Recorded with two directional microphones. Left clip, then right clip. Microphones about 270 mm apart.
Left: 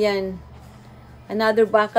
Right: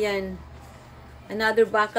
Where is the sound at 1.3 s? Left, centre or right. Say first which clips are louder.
Left 3 dB; centre.